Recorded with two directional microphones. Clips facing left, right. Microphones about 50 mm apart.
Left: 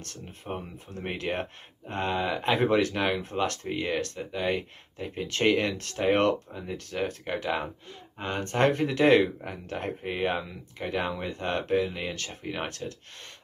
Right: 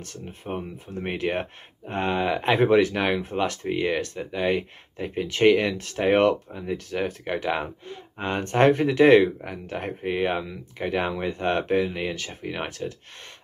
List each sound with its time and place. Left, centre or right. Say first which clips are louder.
0.5 s speech: right 4 dB; centre
4.2 s speech: right 4 dB; centre
4.9 s speech: right 4 dB; right
7.9 s speech: right 6 dB; right
9.0 s speech: right 5 dB; centre
11.1 s speech: right 5 dB; right